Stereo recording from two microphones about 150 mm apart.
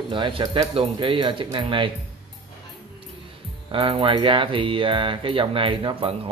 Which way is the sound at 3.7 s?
35° right (ahead or behind).